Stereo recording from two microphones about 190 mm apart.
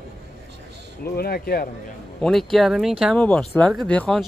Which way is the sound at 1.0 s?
55° left (ahead or behind).